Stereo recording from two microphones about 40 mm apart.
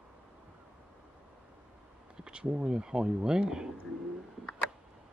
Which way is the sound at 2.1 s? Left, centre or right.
Right.